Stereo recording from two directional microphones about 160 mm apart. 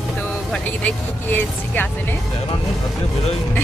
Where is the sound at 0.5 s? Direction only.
10° left (ahead or behind).